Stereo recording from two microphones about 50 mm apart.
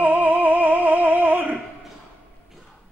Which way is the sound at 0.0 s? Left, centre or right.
Right.